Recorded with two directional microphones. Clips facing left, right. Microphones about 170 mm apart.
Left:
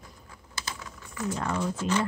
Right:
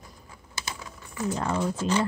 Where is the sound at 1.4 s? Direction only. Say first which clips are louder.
Right 2 dB; 30° right (ahead or behind).